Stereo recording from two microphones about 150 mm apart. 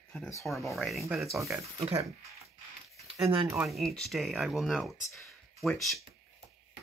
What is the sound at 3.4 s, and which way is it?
Speech, 5° right (ahead or behind).